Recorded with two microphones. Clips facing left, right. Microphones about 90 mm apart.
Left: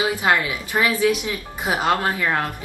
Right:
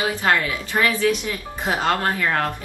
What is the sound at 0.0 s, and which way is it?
Speech, 15° left (ahead or behind).